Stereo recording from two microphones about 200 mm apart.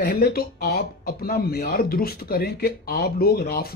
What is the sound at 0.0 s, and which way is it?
Speech, 45° left (ahead or behind).